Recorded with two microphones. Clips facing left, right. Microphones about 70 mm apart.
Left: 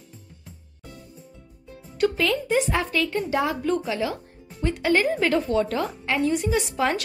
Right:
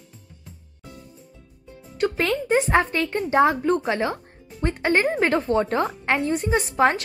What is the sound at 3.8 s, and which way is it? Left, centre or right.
Speech, right.